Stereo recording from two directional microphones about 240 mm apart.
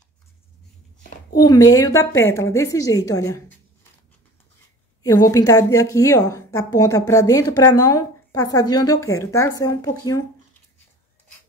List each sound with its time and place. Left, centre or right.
1.3 s speech: centre
5.0 s speech: centre